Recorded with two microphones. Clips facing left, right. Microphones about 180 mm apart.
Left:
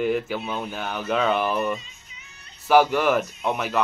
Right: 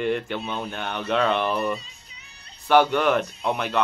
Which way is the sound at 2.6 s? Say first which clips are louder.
Left 1 dB; 5° left (ahead or behind).